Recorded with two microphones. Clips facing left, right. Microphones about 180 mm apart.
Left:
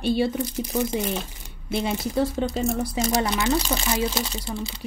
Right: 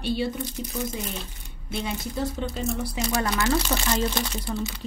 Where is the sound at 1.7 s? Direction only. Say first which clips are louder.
Left 6 dB; 80° left.